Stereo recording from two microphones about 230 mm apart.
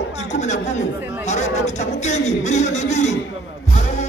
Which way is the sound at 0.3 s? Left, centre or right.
Left.